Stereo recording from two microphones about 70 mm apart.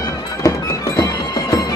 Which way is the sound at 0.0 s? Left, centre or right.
Left.